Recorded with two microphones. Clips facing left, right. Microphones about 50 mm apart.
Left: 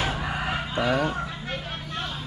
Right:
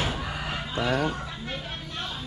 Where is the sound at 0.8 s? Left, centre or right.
Centre.